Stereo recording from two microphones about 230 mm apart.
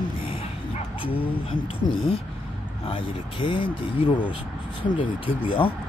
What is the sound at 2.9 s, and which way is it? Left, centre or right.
Speech, left.